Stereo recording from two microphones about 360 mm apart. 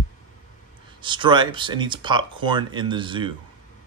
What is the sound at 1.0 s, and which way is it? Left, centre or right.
Speech, centre.